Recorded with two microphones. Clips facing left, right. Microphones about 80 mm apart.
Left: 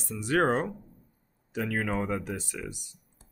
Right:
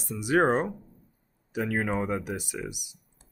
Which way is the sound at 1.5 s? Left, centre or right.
Centre.